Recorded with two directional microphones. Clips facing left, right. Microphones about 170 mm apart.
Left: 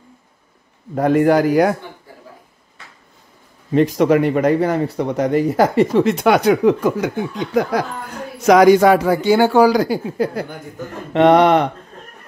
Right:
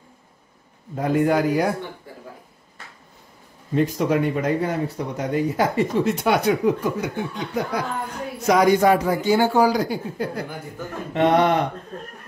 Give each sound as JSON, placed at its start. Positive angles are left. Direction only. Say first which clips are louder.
{"t": 0.9, "sound": "a man's voice", "louder": "left 6 dB", "side_deg": 75}
{"t": 3.7, "sound": "a man's voice", "louder": "left 6 dB", "side_deg": 80}
{"t": 11.1, "sound": "a man's voice", "louder": "left 6 dB", "side_deg": 80}